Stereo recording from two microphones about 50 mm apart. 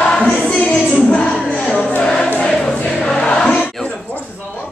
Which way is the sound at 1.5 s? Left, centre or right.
Centre.